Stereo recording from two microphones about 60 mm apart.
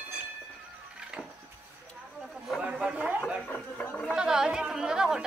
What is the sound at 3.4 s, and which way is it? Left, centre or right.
Speech, left.